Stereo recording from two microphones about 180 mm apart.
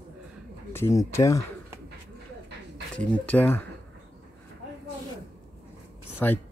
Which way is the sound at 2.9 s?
5° left (ahead or behind).